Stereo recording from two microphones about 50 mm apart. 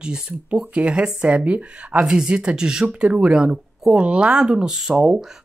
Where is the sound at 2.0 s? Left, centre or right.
Centre.